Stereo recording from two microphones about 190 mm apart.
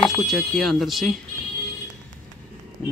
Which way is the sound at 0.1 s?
Centre (ahead or behind).